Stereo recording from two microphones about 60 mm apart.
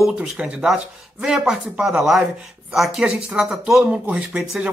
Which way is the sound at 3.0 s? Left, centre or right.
Centre.